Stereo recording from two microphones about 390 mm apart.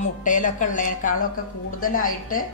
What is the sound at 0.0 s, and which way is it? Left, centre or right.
A woman's voice, centre.